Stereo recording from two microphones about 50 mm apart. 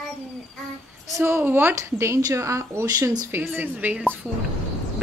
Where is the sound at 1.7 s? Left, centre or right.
Right.